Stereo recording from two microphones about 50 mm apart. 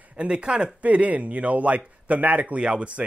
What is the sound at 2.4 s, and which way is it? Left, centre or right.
Speech, right.